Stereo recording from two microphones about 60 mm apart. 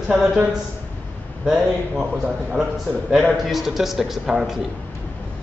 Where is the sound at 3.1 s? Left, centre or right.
Centre.